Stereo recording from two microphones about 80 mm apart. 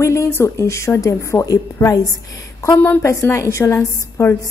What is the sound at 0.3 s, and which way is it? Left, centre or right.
A woman's voice, left.